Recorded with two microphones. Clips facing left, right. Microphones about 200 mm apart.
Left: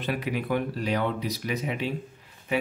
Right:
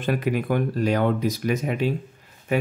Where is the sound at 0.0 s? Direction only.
50° right (ahead or behind).